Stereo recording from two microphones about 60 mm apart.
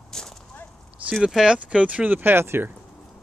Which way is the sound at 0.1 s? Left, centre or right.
Centre.